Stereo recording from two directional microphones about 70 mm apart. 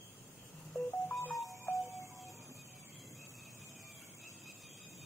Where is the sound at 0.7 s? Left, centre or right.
Left.